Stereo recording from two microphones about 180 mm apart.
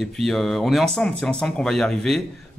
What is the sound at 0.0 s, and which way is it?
A man's voice, centre (ahead or behind).